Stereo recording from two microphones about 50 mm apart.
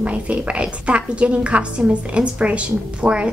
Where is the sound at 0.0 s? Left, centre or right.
Right.